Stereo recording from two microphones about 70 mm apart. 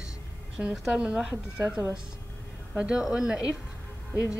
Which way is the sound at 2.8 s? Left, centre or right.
Centre.